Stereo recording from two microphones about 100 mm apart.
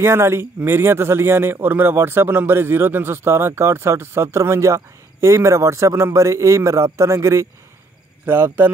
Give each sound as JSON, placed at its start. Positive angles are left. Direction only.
{"t": 0.0, "sound": "speech", "side_deg": -25}